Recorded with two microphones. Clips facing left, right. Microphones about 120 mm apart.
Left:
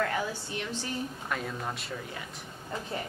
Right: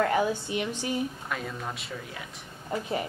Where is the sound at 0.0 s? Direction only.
25° right (ahead or behind).